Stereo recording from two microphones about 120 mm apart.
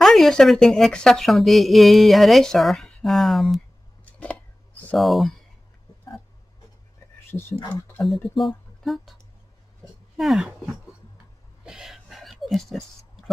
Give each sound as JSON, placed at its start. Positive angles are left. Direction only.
{"t": 0.0, "sound": "a woman's voice", "side_deg": 0}
{"t": 4.0, "sound": "a sound", "side_deg": 10}
{"t": 4.9, "sound": "a woman's voice", "side_deg": 0}
{"t": 7.2, "sound": "speech", "side_deg": 20}
{"t": 8.0, "sound": "a woman's voice", "side_deg": 0}
{"t": 10.1, "sound": "speech", "side_deg": 0}
{"t": 11.6, "sound": "a sound", "side_deg": -5}